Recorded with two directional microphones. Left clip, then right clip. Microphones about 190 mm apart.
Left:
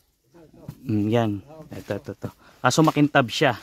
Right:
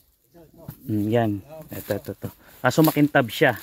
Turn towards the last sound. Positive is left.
turn(degrees=0)  # may be behind; listen again after turning